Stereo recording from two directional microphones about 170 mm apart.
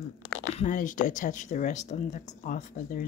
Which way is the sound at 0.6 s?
50° left (ahead or behind).